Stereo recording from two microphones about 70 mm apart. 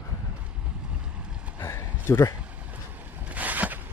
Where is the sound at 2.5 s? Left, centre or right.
Right.